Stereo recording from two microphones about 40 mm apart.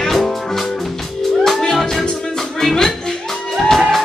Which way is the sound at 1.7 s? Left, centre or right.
Centre.